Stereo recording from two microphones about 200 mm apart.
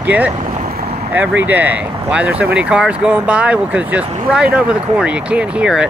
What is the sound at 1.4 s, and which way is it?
Speech, 10° right (ahead or behind).